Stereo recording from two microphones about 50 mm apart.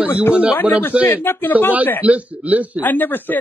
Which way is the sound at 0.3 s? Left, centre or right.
Right.